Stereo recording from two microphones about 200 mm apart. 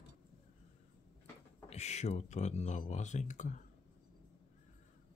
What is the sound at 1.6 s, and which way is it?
Speech, 35° left (ahead or behind).